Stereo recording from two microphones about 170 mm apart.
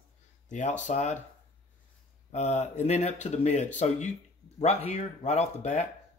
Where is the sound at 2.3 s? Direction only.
40° left (ahead or behind).